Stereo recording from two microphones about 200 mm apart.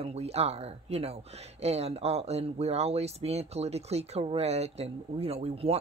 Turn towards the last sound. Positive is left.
turn(degrees=-30)  # may be behind; listen again after turning